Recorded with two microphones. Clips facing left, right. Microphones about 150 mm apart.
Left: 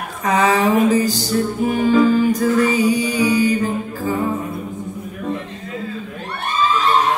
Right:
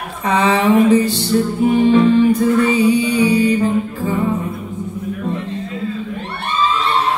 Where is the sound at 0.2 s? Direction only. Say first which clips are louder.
Right 1 dB; 30° right (ahead or behind).